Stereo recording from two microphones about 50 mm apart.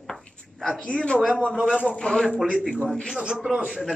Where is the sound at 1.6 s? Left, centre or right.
Centre.